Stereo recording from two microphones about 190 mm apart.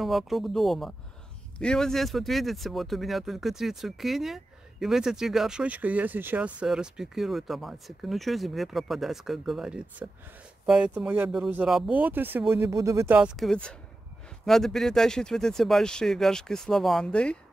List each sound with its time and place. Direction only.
0.0 s speech: centre (ahead or behind)
13.4 s speech: 5° left (ahead or behind)